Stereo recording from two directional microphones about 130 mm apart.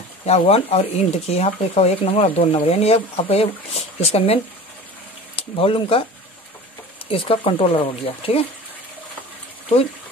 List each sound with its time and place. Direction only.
0.3 s speech: 50° left (ahead or behind)
7.1 s speech: 45° left (ahead or behind)